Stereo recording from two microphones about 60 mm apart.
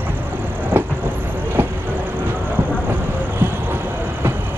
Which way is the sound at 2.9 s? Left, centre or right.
Right.